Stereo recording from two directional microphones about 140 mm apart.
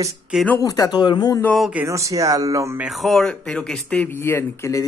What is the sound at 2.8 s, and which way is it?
Speech, centre (ahead or behind).